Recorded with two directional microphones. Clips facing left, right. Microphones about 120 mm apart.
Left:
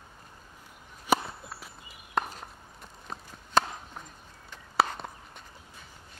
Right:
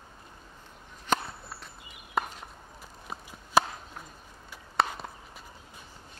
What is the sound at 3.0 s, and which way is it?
Chop, 10° right (ahead or behind).